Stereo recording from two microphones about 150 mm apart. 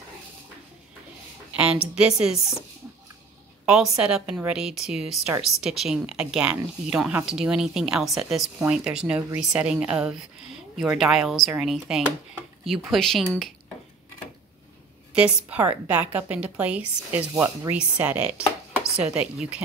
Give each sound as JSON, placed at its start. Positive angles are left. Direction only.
{"t": 1.6, "sound": "speech", "side_deg": -5}
{"t": 3.6, "sound": "a woman's voice", "side_deg": -5}
{"t": 15.1, "sound": "a woman's voice", "side_deg": -10}